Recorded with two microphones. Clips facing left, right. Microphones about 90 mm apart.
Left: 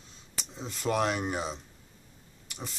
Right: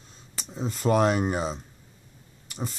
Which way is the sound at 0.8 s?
40° right (ahead or behind).